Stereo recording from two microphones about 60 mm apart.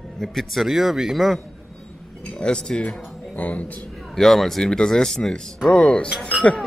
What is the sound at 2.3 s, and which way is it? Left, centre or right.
Speech, centre.